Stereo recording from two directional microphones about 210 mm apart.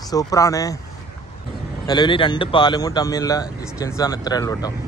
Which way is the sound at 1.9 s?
20° left (ahead or behind).